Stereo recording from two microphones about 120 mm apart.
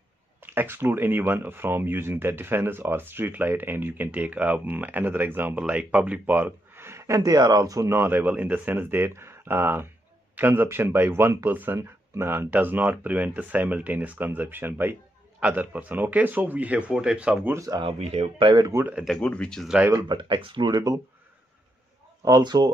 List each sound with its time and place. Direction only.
0.4 s speech: 15° right (ahead or behind)
17.6 s speech: 30° right (ahead or behind)
17.8 s speech: 60° right (ahead or behind)
18.7 s speech: 20° right (ahead or behind)
19.0 s speech: 5° left (ahead or behind)
20.1 s speech: 40° right (ahead or behind)
22.2 s speech: 35° right (ahead or behind)